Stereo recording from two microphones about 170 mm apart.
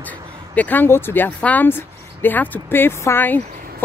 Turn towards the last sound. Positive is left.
turn(degrees=10)  # may be behind; listen again after turning